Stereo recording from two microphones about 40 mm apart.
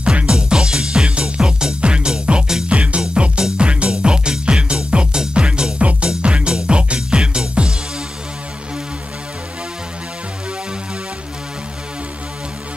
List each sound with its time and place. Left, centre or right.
0.0 s music: right